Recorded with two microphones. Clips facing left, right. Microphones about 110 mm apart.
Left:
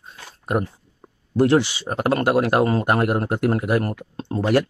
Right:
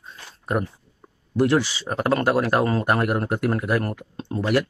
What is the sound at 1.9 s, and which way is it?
A man's voice, 20° left (ahead or behind).